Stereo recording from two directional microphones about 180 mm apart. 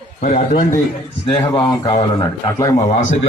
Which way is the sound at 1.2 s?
25° left (ahead or behind).